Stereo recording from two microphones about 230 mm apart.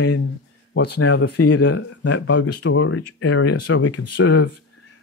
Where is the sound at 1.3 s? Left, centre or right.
Left.